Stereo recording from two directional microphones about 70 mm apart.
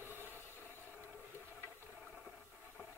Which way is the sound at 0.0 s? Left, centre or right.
Right.